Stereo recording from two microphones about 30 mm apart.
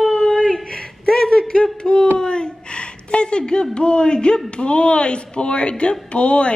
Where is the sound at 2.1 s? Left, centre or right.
Left.